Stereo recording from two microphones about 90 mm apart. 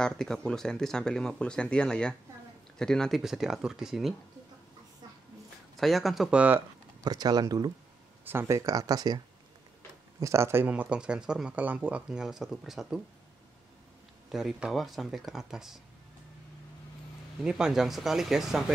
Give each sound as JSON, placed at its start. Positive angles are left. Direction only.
{"t": 0.0, "sound": "speech", "side_deg": 5}
{"t": 3.2, "sound": "speech", "side_deg": -5}
{"t": 5.8, "sound": "speech", "side_deg": 0}
{"t": 6.3, "sound": "speech", "side_deg": -15}
{"t": 7.0, "sound": "speech", "side_deg": -45}
{"t": 8.3, "sound": "speech", "side_deg": -30}
{"t": 10.2, "sound": "speech", "side_deg": -30}
{"t": 10.7, "sound": "speech", "side_deg": -10}
{"t": 14.3, "sound": "speech", "side_deg": -5}
{"t": 17.4, "sound": "speech", "side_deg": -5}